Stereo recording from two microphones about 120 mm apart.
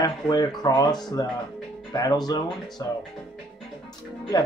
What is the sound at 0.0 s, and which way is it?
Speech, 35° left (ahead or behind).